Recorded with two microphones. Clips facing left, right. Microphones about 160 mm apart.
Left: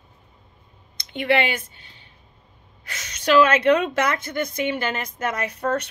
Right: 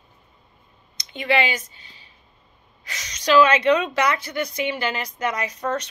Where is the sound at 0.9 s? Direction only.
60° left (ahead or behind).